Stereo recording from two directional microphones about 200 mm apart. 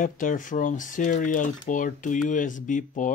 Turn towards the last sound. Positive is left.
turn(degrees=40)  # may be behind; listen again after turning